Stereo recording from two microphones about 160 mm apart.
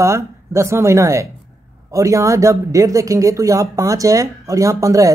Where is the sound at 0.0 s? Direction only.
20° right (ahead or behind).